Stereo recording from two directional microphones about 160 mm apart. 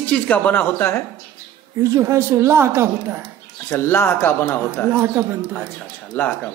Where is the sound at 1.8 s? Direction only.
20° right (ahead or behind).